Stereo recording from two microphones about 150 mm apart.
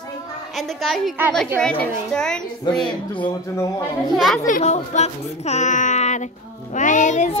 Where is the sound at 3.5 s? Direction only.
20° left (ahead or behind).